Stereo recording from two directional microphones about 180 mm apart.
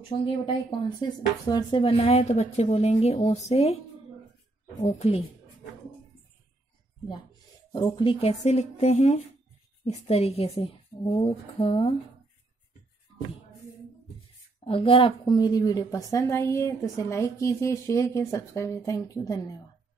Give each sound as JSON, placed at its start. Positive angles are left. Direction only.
{"t": 0.2, "sound": "speech", "side_deg": 30}
{"t": 4.8, "sound": "speech", "side_deg": 35}
{"t": 7.7, "sound": "speech", "side_deg": 25}
{"t": 14.6, "sound": "a woman's voice", "side_deg": 30}